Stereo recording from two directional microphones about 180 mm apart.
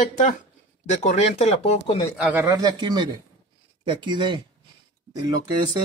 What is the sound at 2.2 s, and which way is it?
Speech, 10° right (ahead or behind).